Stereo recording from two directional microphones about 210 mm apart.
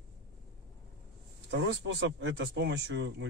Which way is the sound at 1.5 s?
60° right (ahead or behind).